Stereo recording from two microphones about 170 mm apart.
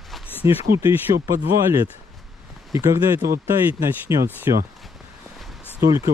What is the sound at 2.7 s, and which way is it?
Speech, 20° right (ahead or behind).